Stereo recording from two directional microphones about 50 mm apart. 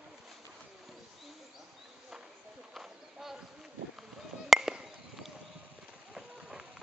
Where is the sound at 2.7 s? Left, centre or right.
Centre.